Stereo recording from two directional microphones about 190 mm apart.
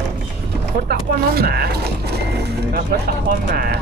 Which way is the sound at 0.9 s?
55° right (ahead or behind).